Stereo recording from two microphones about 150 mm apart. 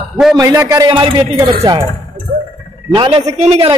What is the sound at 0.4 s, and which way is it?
A man's voice, 20° right (ahead or behind).